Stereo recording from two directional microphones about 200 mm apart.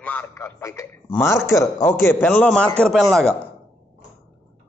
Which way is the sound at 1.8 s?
10° left (ahead or behind).